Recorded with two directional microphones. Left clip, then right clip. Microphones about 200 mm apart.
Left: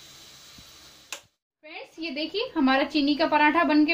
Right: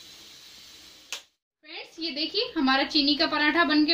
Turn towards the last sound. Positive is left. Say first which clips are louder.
# left 2 dB
turn(degrees=40)  # may be behind; listen again after turning